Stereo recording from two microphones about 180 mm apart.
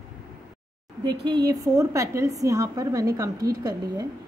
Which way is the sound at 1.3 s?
20° right (ahead or behind).